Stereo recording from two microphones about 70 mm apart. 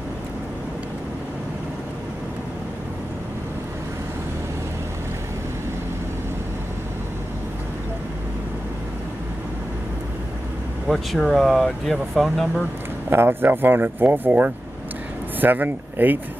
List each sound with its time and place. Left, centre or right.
10.9 s speech: centre
13.1 s speech: right